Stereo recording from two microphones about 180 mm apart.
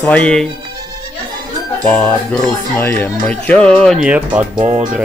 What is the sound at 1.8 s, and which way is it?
Speech, 10° left (ahead or behind).